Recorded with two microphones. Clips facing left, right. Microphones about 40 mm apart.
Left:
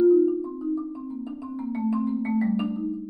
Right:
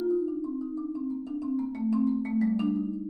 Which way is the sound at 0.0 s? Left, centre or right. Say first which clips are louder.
Left 9 dB; left.